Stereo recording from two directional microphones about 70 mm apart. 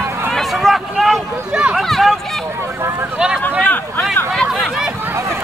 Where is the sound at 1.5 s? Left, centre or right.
Centre.